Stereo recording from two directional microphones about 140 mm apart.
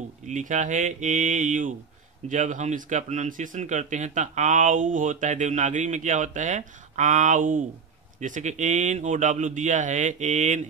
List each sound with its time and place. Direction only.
0.3 s speech: 60° right (ahead or behind)
8.2 s speech: 60° right (ahead or behind)